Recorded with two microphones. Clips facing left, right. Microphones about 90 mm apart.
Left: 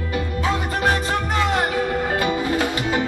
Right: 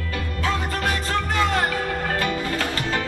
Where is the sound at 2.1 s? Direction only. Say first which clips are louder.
Left 4 dB; 15° left (ahead or behind).